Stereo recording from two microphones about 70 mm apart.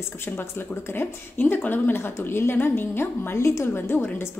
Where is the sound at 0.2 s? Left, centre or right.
Left.